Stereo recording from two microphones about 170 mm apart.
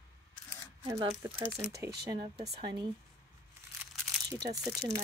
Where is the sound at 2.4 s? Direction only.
25° right (ahead or behind).